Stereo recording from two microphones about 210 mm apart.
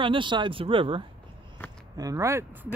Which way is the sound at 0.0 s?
25° right (ahead or behind).